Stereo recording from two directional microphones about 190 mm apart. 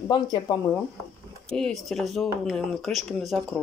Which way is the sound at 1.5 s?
Centre (ahead or behind).